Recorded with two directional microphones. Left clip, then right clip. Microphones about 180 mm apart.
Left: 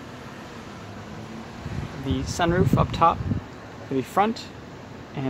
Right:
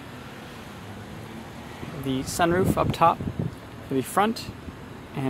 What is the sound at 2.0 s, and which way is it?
Speech, 5° right (ahead or behind).